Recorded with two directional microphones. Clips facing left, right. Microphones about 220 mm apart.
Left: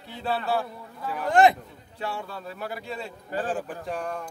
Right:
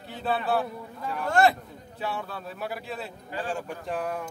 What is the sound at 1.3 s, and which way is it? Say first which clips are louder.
Speech: left 3 dB; 20° left (ahead or behind).